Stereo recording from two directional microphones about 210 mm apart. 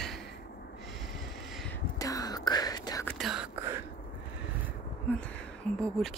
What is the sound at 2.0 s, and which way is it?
Whispering, 15° left (ahead or behind).